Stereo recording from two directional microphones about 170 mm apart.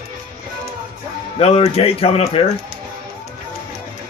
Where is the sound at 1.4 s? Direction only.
35° left (ahead or behind).